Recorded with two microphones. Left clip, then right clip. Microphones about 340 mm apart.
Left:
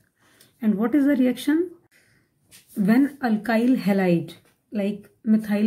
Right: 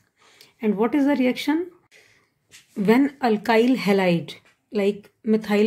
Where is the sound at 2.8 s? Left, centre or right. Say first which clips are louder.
Right 3 dB; centre.